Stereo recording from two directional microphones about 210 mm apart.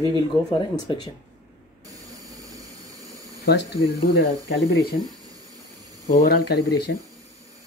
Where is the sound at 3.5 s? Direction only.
55° left (ahead or behind).